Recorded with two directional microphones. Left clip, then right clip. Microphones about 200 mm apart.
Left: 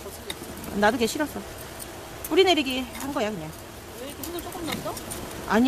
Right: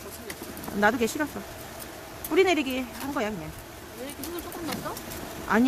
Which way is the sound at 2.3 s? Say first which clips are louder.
Left 2 dB; 5° right (ahead or behind).